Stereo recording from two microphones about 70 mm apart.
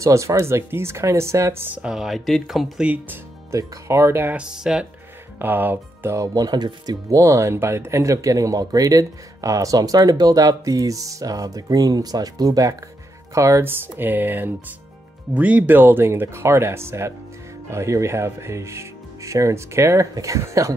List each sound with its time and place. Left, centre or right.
0.0 s speech: right
1.7 s speech: centre
2.0 s speech: centre
2.8 s speech: right
3.5 s speech: right
4.4 s speech: centre
5.4 s speech: right
6.1 s speech: right
7.1 s speech: right
13.6 s speech: right